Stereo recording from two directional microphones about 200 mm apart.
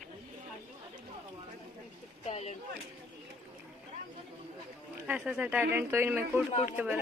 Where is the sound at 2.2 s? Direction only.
35° left (ahead or behind).